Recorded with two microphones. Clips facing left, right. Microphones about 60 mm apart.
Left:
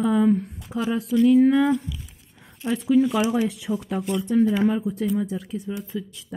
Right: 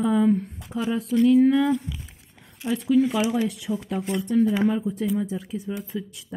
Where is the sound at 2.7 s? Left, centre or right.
Centre.